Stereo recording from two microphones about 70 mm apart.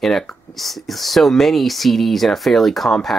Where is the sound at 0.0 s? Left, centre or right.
Centre.